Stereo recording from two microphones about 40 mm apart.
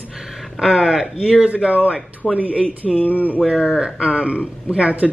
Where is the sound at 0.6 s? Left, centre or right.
Centre.